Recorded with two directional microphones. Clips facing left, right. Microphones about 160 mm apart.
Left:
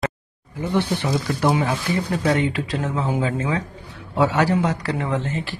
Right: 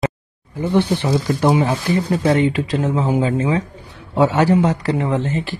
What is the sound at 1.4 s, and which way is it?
Speech, 25° right (ahead or behind).